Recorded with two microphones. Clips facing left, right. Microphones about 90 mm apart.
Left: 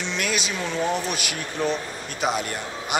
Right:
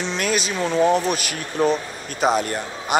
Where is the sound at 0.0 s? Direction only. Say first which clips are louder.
Right 4 dB; 40° right (ahead or behind).